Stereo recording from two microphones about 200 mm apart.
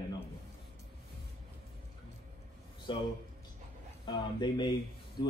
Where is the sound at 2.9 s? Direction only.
25° left (ahead or behind).